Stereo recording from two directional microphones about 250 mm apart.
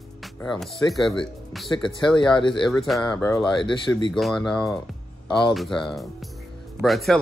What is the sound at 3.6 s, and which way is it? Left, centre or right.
Speech, centre.